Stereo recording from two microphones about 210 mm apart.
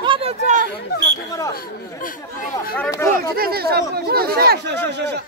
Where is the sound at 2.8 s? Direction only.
10° left (ahead or behind).